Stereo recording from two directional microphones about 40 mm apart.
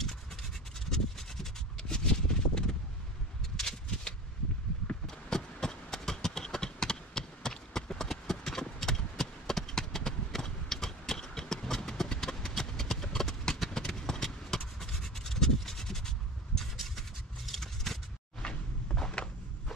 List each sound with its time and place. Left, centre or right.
0.8 s a sound: centre
13.7 s scratch: centre
17.5 s vehicle: centre
18.4 s cupboard open or close: centre